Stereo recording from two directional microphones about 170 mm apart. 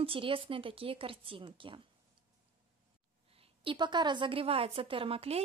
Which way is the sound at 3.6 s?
25° right (ahead or behind).